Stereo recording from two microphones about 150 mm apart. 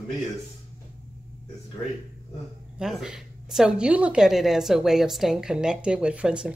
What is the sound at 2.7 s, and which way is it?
A woman's voice, 5° right (ahead or behind).